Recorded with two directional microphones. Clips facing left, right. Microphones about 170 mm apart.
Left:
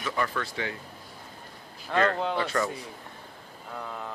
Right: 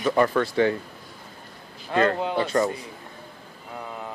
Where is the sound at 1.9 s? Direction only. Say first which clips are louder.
Right 3 dB; 35° right (ahead or behind).